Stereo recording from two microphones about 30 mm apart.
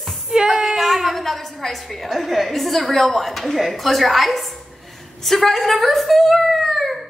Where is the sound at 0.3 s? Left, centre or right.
Centre.